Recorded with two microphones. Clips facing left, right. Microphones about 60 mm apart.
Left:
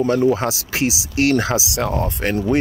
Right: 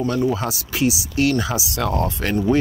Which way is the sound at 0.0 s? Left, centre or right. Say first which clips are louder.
Left 4 dB; left.